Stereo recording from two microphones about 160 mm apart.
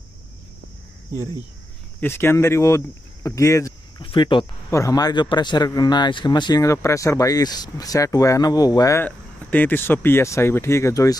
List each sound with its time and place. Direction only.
2.0 s speech: 15° left (ahead or behind)
4.0 s speech: 30° left (ahead or behind)
4.6 s speech: 20° left (ahead or behind)